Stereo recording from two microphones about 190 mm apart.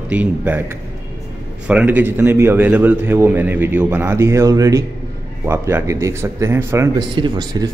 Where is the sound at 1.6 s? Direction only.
5° right (ahead or behind).